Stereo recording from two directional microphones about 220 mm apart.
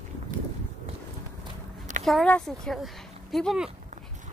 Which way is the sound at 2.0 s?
5° left (ahead or behind).